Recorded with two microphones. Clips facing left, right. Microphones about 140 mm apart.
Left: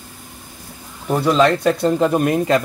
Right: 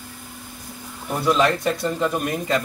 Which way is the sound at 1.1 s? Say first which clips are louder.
Left 4 dB; 75° left (ahead or behind).